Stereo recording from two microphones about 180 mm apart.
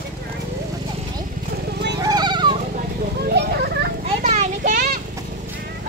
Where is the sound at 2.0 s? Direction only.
25° right (ahead or behind).